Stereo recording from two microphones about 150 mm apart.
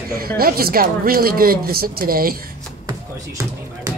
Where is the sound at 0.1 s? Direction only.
90° right.